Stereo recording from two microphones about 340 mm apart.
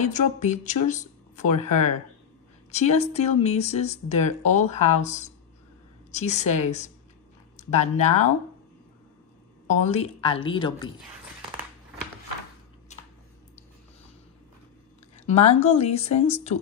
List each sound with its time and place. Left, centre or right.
0.0 s speech: left
9.7 s a woman's voice: centre
12.9 s a sound: centre
15.1 s speech: centre